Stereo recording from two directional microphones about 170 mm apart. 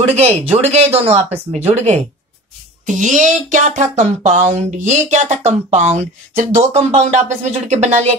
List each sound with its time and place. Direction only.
0.1 s speech: 40° right (ahead or behind)